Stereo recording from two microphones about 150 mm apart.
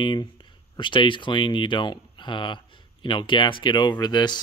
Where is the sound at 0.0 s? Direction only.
30° left (ahead or behind).